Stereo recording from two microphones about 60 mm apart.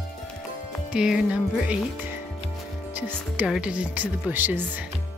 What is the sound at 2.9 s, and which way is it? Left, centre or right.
Speech, right.